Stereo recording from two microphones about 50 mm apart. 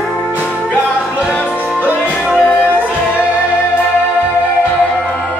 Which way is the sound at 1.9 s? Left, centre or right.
Right.